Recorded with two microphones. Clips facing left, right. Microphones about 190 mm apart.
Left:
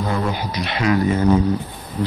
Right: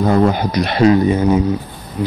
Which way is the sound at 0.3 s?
45° right (ahead or behind).